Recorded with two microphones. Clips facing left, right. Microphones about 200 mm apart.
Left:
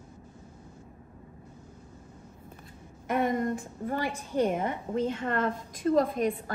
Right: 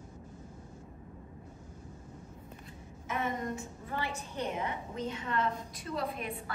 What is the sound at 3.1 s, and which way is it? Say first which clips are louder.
A woman's voice: left 8 dB; 50° left (ahead or behind).